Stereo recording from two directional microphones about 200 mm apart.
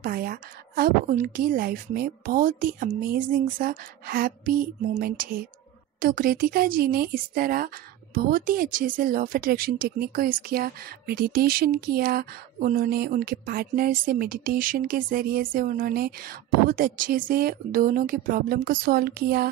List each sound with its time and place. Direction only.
0.0 s speech: 45° right (ahead or behind)